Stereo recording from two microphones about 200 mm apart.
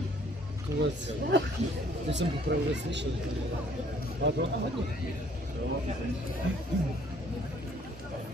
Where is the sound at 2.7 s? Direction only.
60° right (ahead or behind).